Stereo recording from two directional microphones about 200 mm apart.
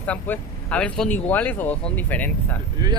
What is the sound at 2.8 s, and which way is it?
Speech, 20° right (ahead or behind).